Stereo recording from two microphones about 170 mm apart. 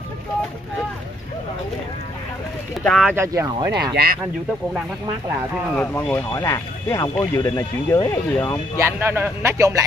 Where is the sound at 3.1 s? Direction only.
15° right (ahead or behind).